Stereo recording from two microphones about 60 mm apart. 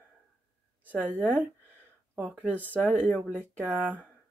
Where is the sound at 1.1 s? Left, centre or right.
Right.